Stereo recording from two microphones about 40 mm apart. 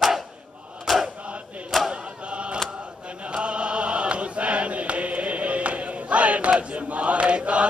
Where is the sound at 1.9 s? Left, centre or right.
Right.